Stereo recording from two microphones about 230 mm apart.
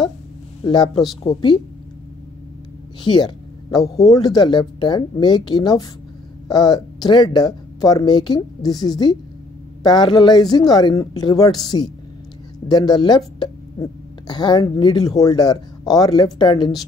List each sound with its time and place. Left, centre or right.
0.7 s speech: centre
3.0 s speech: centre